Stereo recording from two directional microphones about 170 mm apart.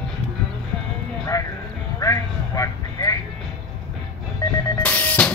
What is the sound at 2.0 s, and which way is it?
Vehicle, 20° left (ahead or behind).